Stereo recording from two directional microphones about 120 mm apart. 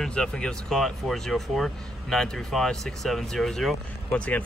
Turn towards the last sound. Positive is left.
turn(degrees=10)  # may be behind; listen again after turning